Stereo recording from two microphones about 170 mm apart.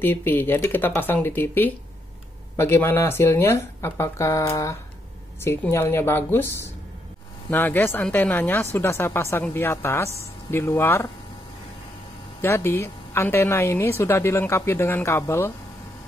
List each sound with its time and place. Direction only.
0.0 s a woman's voice: 10° left (ahead or behind)
7.5 s a woman's voice: 10° left (ahead or behind)
12.4 s a woman's voice: 15° left (ahead or behind)